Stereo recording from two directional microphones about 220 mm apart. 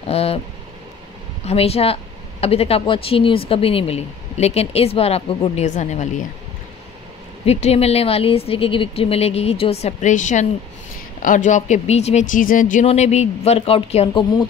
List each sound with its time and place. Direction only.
0.0 s a sound: 25° left (ahead or behind)
1.4 s speech: 30° left (ahead or behind)
7.4 s speech: 30° left (ahead or behind)